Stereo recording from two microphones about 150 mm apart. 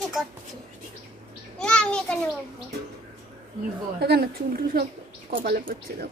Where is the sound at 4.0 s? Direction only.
90° right.